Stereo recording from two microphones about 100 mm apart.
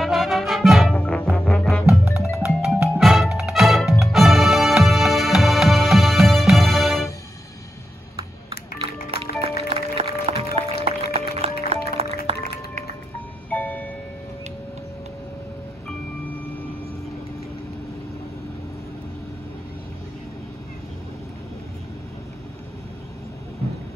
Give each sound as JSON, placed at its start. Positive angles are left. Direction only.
{"t": 0.0, "sound": "music", "side_deg": 0}
{"t": 0.9, "sound": "music", "side_deg": 10}
{"t": 2.0, "sound": "music", "side_deg": 30}
{"t": 2.3, "sound": "music", "side_deg": -10}
{"t": 9.1, "sound": "music", "side_deg": -75}
{"t": 13.5, "sound": "music", "side_deg": 15}
{"t": 16.3, "sound": "a sound", "side_deg": 15}